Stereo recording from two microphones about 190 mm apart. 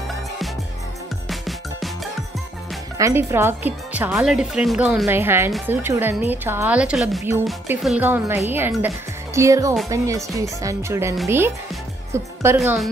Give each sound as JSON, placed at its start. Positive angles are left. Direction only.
{"t": 1.3, "sound": "music", "side_deg": 0}
{"t": 3.0, "sound": "speech", "side_deg": -15}
{"t": 12.1, "sound": "music", "side_deg": -15}